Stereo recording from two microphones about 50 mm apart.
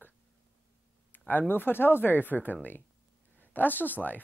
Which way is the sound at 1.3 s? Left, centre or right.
Left.